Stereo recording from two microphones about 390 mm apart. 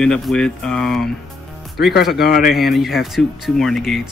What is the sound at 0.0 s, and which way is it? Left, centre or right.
Speech, centre.